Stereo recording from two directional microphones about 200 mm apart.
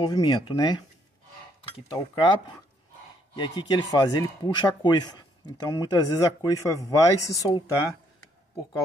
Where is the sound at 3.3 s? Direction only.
20° left (ahead or behind).